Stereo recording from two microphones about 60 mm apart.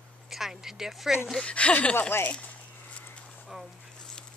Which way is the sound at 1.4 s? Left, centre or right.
Left.